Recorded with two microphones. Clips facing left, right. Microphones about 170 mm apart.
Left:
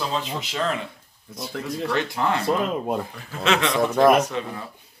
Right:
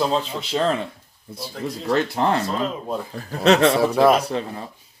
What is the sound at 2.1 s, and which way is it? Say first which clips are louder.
Speech: right 1 dB; 35° right (ahead or behind).